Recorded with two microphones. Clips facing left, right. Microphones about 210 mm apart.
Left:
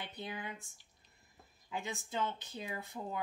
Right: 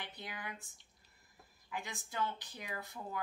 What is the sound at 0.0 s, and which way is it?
Speech, 25° left (ahead or behind).